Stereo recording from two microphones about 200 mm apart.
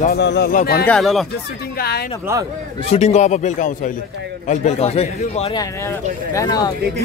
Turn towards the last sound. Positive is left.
turn(degrees=15)  # may be behind; listen again after turning